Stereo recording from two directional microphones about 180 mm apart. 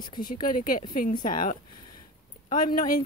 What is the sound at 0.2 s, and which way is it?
Speech, 50° left (ahead or behind).